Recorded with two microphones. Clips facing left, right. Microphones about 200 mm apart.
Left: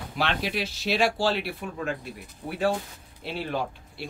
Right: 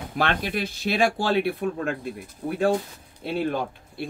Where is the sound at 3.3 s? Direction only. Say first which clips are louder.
Right 4 dB; 50° right (ahead or behind).